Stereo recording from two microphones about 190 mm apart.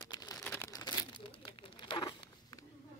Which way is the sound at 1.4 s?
25° left (ahead or behind).